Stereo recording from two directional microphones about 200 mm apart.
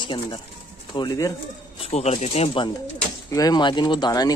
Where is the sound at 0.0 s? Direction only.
25° left (ahead or behind).